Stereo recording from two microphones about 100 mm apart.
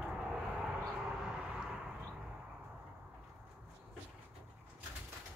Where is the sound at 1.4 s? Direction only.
10° right (ahead or behind).